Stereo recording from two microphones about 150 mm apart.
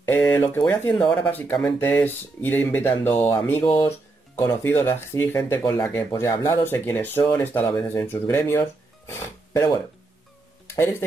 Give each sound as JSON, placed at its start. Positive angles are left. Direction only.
{"t": 0.0, "sound": "a sound", "side_deg": 15}
{"t": 0.7, "sound": "speech", "side_deg": 10}
{"t": 10.7, "sound": "speech", "side_deg": 15}